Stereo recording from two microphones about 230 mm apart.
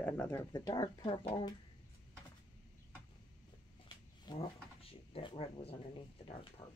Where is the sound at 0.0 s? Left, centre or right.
Centre.